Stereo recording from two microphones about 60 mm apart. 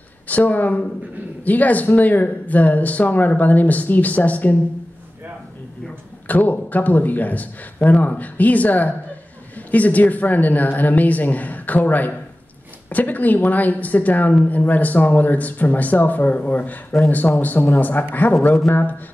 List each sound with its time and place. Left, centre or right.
0.3 s a woman's voice: left
6.2 s a woman's voice: left